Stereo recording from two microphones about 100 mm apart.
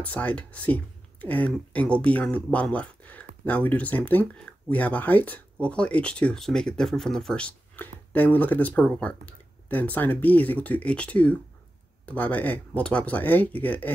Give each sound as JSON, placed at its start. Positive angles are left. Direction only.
{"t": 0.0, "sound": "speech", "side_deg": 15}